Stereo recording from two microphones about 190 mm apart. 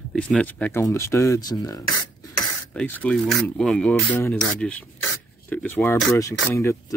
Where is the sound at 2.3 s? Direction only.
5° left (ahead or behind).